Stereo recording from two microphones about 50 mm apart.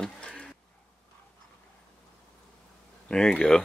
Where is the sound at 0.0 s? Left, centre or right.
Centre.